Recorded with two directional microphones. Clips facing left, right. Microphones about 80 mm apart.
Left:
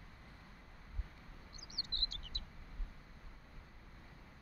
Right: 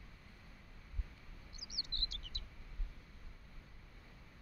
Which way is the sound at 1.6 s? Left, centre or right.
Left.